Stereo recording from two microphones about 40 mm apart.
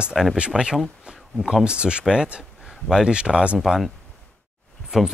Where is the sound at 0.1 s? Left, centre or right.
Centre.